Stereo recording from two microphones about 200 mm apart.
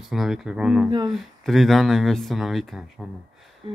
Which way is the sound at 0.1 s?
Centre (ahead or behind).